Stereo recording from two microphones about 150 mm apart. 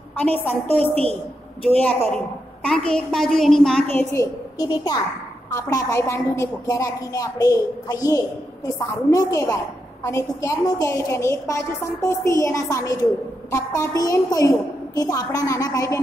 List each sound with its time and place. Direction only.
0.2 s a woman's voice: 10° left (ahead or behind)
4.1 s a woman's voice: 25° left (ahead or behind)